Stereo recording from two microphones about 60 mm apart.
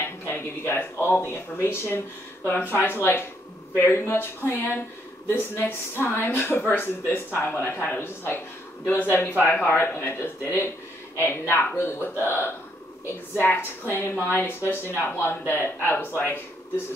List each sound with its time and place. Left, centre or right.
0.3 s speech: left